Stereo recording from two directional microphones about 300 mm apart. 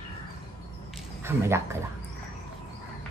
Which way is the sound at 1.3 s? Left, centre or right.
Centre.